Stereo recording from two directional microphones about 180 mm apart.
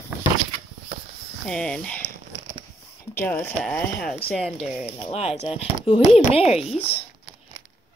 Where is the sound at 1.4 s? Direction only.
5° left (ahead or behind).